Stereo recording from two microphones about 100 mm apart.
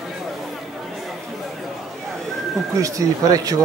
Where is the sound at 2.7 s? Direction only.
35° right (ahead or behind).